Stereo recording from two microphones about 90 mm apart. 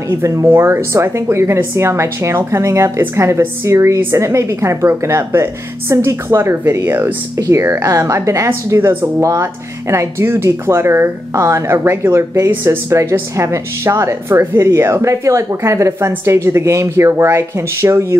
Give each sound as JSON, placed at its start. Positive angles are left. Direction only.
{"t": 0.1, "sound": "speech", "side_deg": -35}